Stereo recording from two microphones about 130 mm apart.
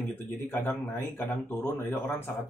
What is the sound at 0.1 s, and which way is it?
Speech, 15° left (ahead or behind).